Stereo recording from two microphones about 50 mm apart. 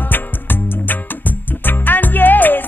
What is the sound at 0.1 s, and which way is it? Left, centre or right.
Music, left.